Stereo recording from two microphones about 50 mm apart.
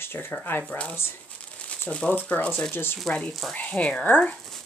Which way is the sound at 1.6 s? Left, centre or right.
Left.